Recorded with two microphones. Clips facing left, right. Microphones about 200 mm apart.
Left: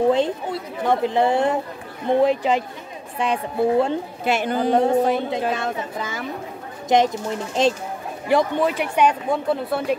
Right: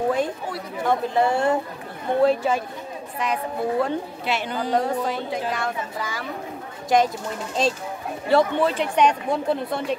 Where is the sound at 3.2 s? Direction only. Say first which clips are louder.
Left 4 dB; 30° left (ahead or behind).